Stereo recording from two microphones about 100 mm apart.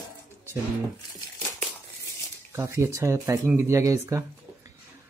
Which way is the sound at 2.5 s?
25° right (ahead or behind).